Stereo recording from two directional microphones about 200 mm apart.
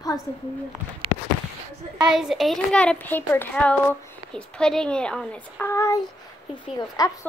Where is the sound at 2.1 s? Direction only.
Centre (ahead or behind); by 7.1 s 20° left (ahead or behind).